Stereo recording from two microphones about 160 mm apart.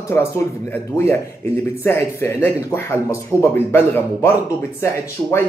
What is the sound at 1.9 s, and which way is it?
Speech, 15° left (ahead or behind).